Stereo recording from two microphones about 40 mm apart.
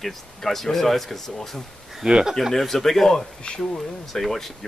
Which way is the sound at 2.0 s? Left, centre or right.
Centre.